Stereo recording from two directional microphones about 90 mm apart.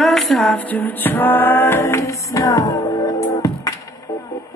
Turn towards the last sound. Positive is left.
turn(degrees=40)  # may be behind; listen again after turning